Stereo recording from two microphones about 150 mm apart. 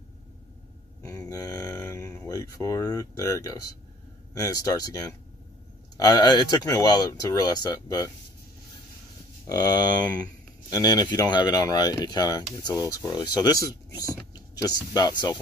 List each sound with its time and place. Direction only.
1.0 s speech: 20° left (ahead or behind)
5.9 s speech: 25° left (ahead or behind)
9.5 s speech: 25° left (ahead or behind)